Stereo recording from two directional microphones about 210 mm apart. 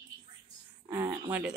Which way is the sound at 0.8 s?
15° right (ahead or behind).